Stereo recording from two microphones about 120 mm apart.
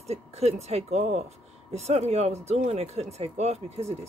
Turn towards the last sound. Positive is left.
turn(degrees=-60)  # may be behind; listen again after turning